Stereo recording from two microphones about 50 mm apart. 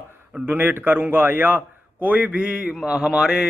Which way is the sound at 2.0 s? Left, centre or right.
Right.